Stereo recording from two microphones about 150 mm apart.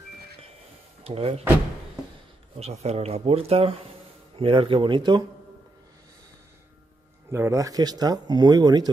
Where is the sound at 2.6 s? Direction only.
45° right (ahead or behind).